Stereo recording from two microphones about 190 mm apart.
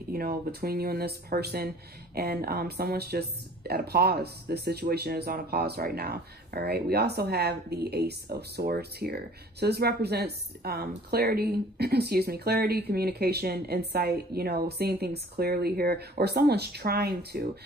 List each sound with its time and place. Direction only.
0.1 s speech: 50° right (ahead or behind)